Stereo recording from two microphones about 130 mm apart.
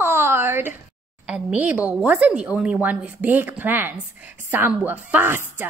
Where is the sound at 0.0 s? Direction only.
15° right (ahead or behind).